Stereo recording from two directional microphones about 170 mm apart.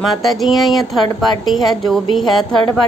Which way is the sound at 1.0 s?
25° left (ahead or behind).